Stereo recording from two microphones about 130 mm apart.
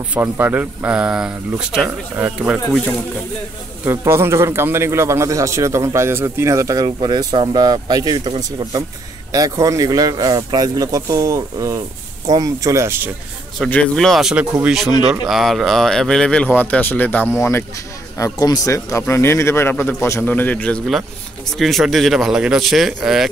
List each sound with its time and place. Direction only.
0.1 s speech: 15° right (ahead or behind)
3.8 s a man's voice: 20° right (ahead or behind)
13.7 s speech: 5° left (ahead or behind)